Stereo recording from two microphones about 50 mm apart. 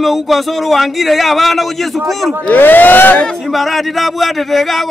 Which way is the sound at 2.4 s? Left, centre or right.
Left.